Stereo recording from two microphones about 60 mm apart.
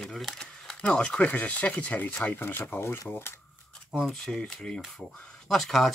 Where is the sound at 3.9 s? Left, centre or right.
Centre.